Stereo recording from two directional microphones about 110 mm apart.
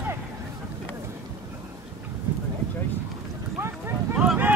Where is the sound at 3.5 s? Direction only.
20° right (ahead or behind).